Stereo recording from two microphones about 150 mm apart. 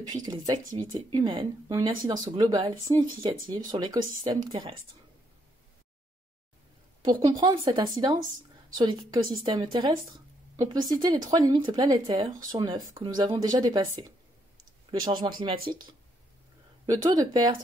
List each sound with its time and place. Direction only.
0.0 s a woman's voice: 25° right (ahead or behind)
7.0 s a woman's voice: 30° right (ahead or behind)
14.9 s a woman's voice: 30° right (ahead or behind)
16.8 s speech: 25° right (ahead or behind)